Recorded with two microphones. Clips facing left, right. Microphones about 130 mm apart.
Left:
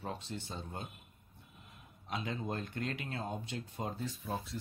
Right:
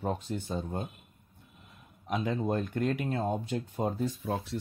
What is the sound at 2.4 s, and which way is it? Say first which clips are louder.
Speech: right 9 dB; 50° right (ahead or behind).